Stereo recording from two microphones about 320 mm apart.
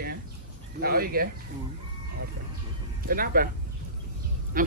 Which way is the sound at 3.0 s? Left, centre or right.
Right.